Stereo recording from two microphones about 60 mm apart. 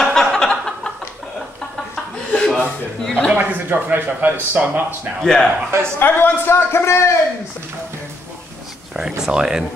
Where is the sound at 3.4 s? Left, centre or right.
Right.